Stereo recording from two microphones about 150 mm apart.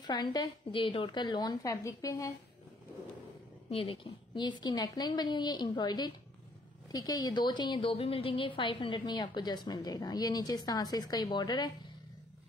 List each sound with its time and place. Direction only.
0.0 s a woman's voice: 30° left (ahead or behind)
3.7 s a woman's voice: 35° left (ahead or behind)